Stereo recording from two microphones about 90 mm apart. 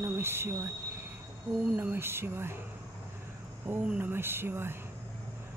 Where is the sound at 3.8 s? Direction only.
20° right (ahead or behind).